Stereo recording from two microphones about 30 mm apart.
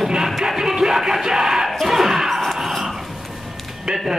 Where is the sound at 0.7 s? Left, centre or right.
Centre.